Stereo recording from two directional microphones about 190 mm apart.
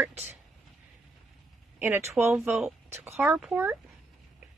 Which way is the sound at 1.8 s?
15° right (ahead or behind).